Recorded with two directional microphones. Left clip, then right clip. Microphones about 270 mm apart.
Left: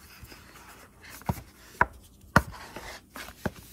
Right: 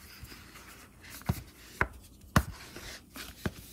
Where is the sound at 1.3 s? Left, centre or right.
Centre.